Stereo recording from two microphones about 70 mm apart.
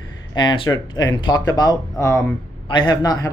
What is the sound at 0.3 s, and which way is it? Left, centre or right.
Speech, left.